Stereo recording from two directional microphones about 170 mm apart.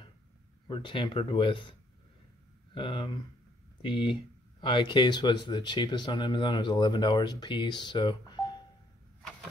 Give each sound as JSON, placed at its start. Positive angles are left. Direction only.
{"t": 0.7, "sound": "speech", "side_deg": 30}